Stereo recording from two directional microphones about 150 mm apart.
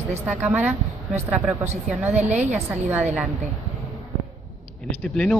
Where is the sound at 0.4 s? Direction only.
10° right (ahead or behind).